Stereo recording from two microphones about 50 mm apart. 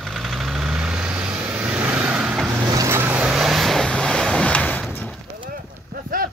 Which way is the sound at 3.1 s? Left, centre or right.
Centre.